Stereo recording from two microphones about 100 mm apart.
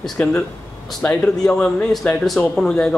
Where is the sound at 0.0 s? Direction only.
10° left (ahead or behind).